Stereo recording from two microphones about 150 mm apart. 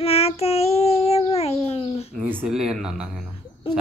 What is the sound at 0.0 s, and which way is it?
Child singing, 40° left (ahead or behind).